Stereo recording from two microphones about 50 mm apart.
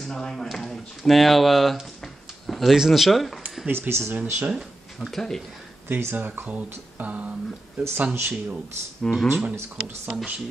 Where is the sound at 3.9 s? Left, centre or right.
Right.